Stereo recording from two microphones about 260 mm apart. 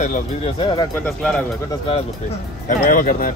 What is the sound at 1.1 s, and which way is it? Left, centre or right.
Speech, centre.